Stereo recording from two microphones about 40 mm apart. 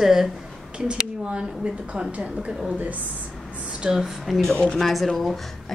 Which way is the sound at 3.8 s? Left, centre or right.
Right.